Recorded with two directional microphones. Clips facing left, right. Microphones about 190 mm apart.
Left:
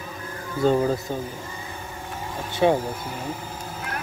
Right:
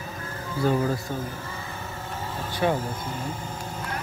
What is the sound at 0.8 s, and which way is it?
Speech, 20° left (ahead or behind).